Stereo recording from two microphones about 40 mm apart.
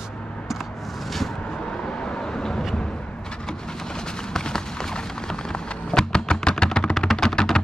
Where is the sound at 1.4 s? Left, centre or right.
Centre.